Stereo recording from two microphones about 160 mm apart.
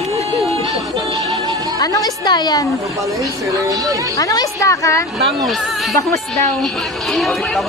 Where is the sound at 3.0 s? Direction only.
20° right (ahead or behind).